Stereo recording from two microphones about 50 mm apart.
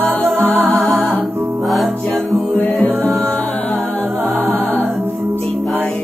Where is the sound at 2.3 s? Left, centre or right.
Right.